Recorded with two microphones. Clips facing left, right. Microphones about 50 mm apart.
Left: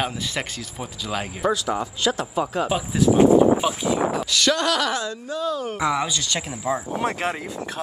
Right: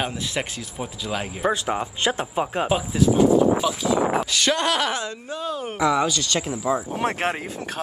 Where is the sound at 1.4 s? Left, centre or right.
Right.